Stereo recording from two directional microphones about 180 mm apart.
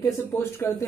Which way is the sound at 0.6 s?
15° left (ahead or behind).